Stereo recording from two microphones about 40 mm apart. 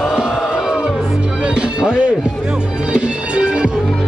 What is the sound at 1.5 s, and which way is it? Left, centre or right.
Speech, centre.